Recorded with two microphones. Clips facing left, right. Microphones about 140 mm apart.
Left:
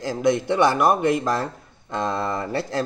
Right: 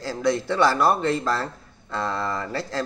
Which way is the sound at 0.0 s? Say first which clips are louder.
Left 3 dB; 15° left (ahead or behind).